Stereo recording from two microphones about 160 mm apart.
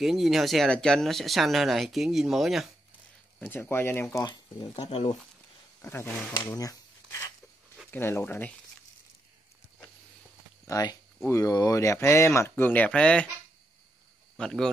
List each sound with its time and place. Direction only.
0.0 s speech: centre (ahead or behind)
3.3 s speech: 10° left (ahead or behind)
4.2 s speech: 25° left (ahead or behind)
5.8 s speech: 15° left (ahead or behind)
6.5 s a sound: 20° left (ahead or behind)
7.9 s speech: 15° left (ahead or behind)
10.7 s speech: 25° left (ahead or behind); by 13.3 s 5° left (ahead or behind)
14.3 s speech: 5° left (ahead or behind)